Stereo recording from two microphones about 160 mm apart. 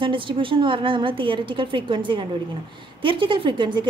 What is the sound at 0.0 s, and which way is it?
A woman's voice, 30° right (ahead or behind).